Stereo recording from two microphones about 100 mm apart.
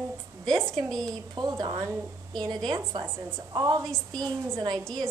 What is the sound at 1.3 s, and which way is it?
Speech, 45° right (ahead or behind).